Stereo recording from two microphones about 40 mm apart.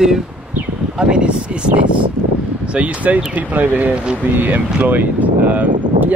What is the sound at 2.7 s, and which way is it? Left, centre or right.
Speech, right.